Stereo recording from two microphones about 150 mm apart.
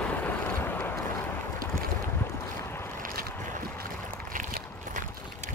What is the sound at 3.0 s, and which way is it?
Boat, 65° right (ahead or behind).